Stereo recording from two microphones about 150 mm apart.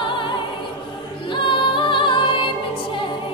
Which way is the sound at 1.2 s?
35° left (ahead or behind).